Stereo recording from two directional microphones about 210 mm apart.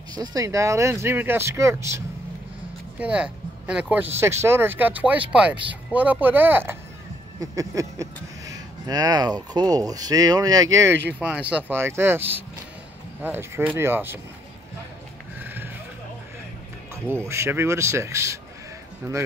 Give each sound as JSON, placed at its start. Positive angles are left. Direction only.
{"t": 0.2, "sound": "speech", "side_deg": -15}
{"t": 11.1, "sound": "speech", "side_deg": -5}
{"t": 15.3, "sound": "a sound", "side_deg": -10}
{"t": 16.9, "sound": "speech", "side_deg": -15}